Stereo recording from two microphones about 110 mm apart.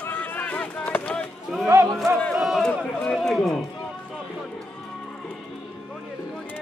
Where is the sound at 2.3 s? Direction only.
5° right (ahead or behind).